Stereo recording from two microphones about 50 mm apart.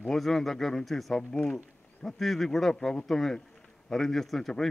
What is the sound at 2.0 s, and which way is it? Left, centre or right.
A man's voice, centre.